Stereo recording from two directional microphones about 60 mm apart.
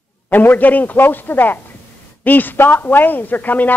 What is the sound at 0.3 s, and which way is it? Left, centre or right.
A woman's voice, left.